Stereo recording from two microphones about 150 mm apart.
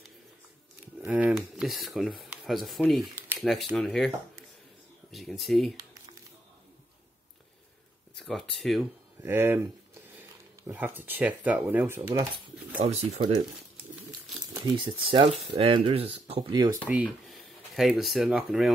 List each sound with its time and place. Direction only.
0.9 s speech: 10° right (ahead or behind)
5.1 s speech: centre (ahead or behind)
8.2 s speech: centre (ahead or behind)
9.2 s speech: 15° right (ahead or behind)
10.7 s speech: 15° right (ahead or behind)
12.7 s speech: 45° right (ahead or behind)
14.4 s speech: 25° right (ahead or behind)
16.9 s speech: 5° right (ahead or behind)